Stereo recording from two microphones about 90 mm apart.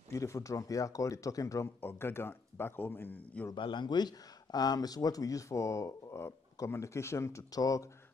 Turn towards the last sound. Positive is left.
turn(degrees=40)  # may be behind; listen again after turning